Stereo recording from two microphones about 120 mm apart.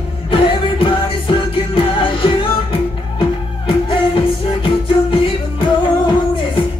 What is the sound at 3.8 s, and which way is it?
Music, 50° left (ahead or behind).